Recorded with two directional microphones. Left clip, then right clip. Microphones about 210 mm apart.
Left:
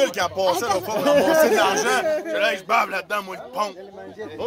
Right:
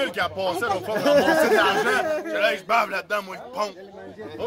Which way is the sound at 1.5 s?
20° left (ahead or behind).